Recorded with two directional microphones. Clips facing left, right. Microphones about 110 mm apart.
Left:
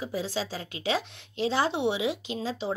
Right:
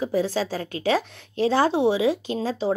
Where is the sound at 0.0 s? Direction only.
50° right (ahead or behind).